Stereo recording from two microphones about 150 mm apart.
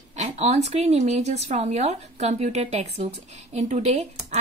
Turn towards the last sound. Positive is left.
turn(degrees=-45)  # may be behind; listen again after turning